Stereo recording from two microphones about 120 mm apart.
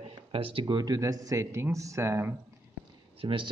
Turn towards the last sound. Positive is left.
turn(degrees=-45)  # may be behind; listen again after turning